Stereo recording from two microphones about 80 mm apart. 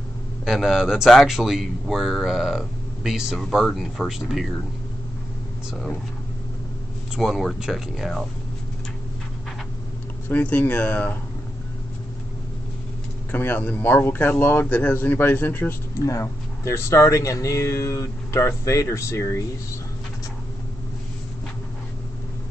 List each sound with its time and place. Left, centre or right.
0.5 s speech: centre
3.3 s speech: centre
7.2 s speech: centre
10.2 s speech: left
13.3 s speech: centre
16.0 s speech: left